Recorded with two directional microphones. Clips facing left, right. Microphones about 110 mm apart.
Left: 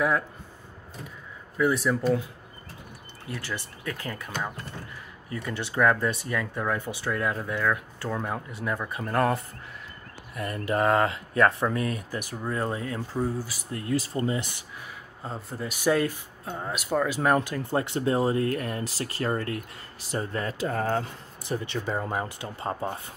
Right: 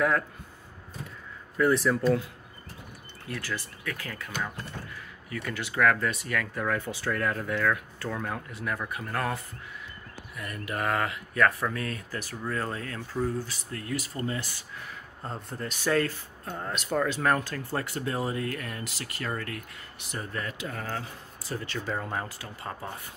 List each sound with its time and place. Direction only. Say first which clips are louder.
1.6 s speech: even; 5° left (ahead or behind)
3.3 s speech: even; 20° left (ahead or behind)
10.3 s speech: left 7 dB; 30° left (ahead or behind); by 13.6 s 10° left (ahead or behind)
13.7 s speech: left 5 dB; 25° left (ahead or behind)
15.2 s speech: left 2 dB; 5° left (ahead or behind); by 20.8 s 40° left (ahead or behind)
21.4 s speech: left 4 dB; 20° left (ahead or behind)